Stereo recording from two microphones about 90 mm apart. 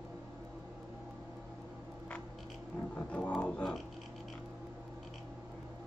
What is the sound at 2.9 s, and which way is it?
Speech, 15° left (ahead or behind).